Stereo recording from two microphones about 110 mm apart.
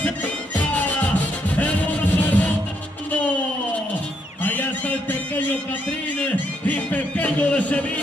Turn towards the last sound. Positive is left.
turn(degrees=15)  # may be behind; listen again after turning